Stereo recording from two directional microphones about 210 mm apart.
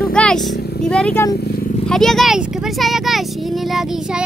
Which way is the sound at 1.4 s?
50° left (ahead or behind).